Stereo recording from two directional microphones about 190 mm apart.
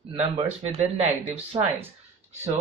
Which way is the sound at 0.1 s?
30° right (ahead or behind).